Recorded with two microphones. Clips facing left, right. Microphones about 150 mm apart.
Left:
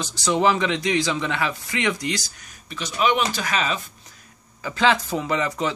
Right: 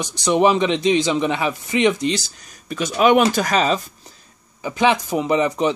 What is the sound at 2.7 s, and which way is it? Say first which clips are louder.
Speech: right 7 dB; 50° right (ahead or behind).